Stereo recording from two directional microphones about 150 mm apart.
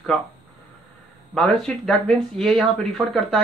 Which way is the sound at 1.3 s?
Centre (ahead or behind).